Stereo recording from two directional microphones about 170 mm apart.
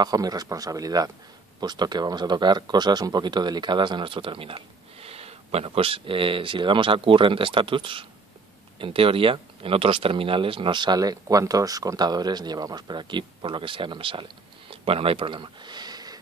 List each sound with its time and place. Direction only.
0.0 s speech: 20° right (ahead or behind)